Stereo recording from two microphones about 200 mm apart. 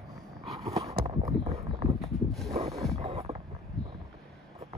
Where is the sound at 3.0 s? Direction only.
30° right (ahead or behind).